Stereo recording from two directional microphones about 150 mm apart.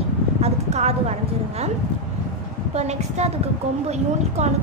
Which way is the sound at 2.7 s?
45° right (ahead or behind).